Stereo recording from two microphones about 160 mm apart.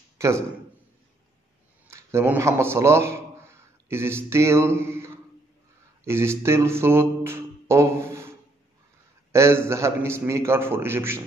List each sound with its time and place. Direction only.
0.2 s a man's voice: 20° right (ahead or behind)
1.9 s a man's voice: 15° right (ahead or behind)
9.3 s a man's voice: 15° right (ahead or behind)